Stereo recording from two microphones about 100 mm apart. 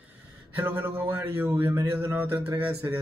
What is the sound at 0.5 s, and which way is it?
Speech, 20° right (ahead or behind).